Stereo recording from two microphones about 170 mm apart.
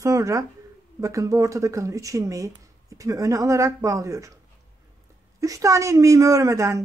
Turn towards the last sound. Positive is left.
turn(degrees=-20)  # may be behind; listen again after turning